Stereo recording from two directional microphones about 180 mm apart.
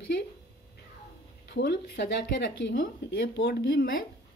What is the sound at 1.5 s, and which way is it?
Speech, 75° left (ahead or behind).